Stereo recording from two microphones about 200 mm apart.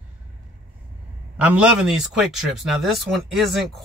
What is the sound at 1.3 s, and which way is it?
Speech, 5° right (ahead or behind).